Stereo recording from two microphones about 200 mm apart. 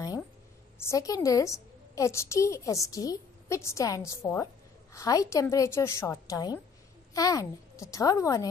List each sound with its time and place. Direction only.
0.7 s a woman's voice: 15° left (ahead or behind)